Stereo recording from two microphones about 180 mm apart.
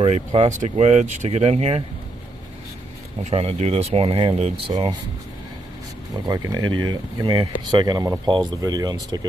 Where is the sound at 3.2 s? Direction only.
35° right (ahead or behind).